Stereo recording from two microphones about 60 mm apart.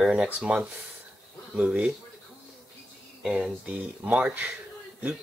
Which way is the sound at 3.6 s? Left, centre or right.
Right.